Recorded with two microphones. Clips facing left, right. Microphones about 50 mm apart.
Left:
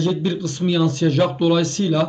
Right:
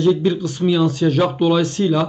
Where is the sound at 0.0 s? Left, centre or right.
Centre.